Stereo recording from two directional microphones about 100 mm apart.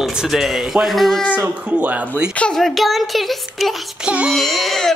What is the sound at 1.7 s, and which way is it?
Speech, 15° right (ahead or behind).